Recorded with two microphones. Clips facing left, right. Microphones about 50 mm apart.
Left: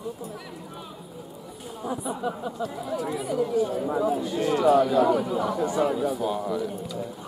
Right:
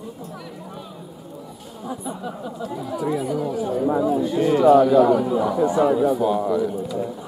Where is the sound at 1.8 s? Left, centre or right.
Centre.